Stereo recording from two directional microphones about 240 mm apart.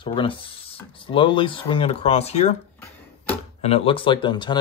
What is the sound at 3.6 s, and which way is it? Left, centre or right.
Speech, left.